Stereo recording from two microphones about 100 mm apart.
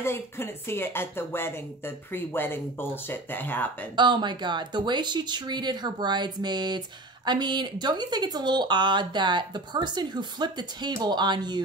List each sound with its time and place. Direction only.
0.0 s speech: 25° left (ahead or behind)
3.9 s speech: 50° right (ahead or behind)